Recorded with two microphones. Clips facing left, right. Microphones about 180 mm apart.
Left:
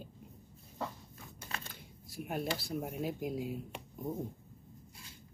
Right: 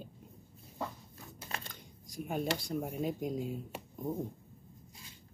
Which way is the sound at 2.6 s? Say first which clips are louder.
Right 2 dB; 5° left (ahead or behind).